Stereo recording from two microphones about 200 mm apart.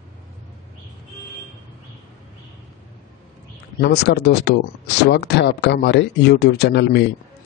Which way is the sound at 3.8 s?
55° left (ahead or behind).